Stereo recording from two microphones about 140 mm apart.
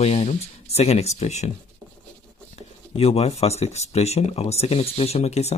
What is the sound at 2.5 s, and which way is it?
Speech, 45° left (ahead or behind).